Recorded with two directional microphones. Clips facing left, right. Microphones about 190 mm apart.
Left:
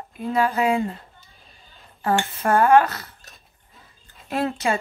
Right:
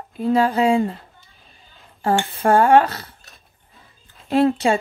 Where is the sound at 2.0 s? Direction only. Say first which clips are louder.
Right 3 dB; 30° right (ahead or behind).